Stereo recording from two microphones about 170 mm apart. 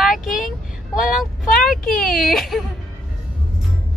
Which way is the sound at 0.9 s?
Centre (ahead or behind).